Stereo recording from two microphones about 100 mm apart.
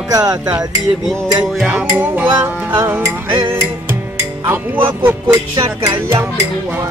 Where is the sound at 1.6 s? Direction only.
15° right (ahead or behind).